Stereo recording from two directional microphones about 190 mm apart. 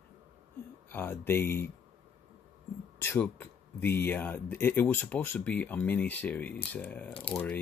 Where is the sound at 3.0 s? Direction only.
10° left (ahead or behind).